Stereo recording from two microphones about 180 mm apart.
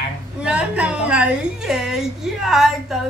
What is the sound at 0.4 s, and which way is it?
A woman's voice, 5° right (ahead or behind).